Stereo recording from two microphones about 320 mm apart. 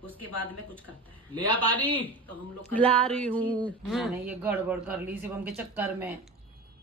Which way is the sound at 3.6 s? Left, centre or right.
Centre.